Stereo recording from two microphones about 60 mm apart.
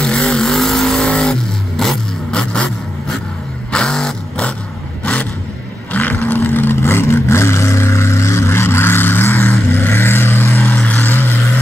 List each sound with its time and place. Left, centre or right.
0.0 s vehicle: centre
5.9 s vehicle: left